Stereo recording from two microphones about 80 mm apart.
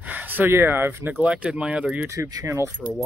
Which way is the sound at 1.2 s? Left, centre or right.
Centre.